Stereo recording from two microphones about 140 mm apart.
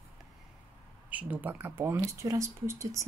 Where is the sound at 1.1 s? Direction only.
10° right (ahead or behind).